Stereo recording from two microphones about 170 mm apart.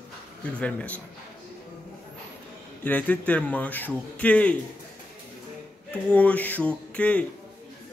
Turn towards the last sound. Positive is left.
turn(degrees=5)  # may be behind; listen again after turning